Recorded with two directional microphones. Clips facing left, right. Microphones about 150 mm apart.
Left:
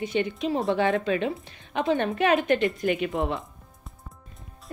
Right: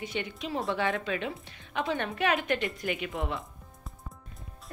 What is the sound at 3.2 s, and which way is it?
Speech, 20° left (ahead or behind).